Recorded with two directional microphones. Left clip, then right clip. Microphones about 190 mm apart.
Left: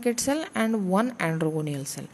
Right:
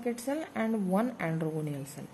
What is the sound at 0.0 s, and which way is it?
A woman's voice, 20° left (ahead or behind).